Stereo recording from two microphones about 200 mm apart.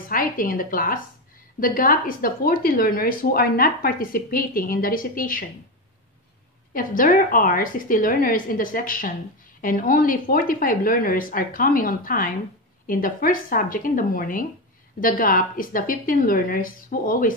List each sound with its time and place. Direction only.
0.1 s a woman's voice: 45° left (ahead or behind)
6.7 s a woman's voice: 45° left (ahead or behind)